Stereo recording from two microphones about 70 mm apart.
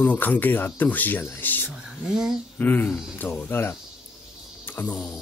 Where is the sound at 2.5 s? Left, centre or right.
Left.